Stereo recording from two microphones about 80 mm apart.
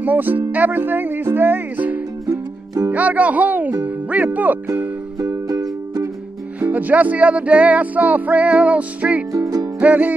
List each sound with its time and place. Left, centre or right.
0.0 s speech: right
2.2 s music: right
2.9 s speech: centre
5.2 s music: right
6.6 s music: right
9.3 s speech: right
9.8 s music: centre